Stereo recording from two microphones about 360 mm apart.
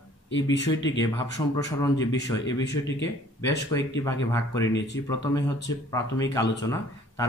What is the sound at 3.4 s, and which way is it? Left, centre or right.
Speech, centre.